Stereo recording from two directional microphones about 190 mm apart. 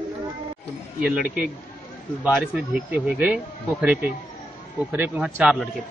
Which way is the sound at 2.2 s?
5° right (ahead or behind).